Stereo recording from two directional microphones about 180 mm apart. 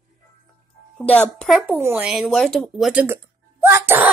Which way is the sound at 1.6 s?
10° right (ahead or behind).